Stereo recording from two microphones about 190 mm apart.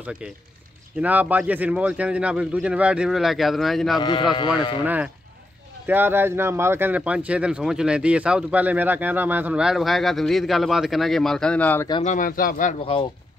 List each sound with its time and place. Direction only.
0.2 s speech: 5° right (ahead or behind)
4.0 s speech: 25° left (ahead or behind)
4.8 s speech: 10° right (ahead or behind); by 11.9 s 10° left (ahead or behind)
12.0 s speech: 40° left (ahead or behind)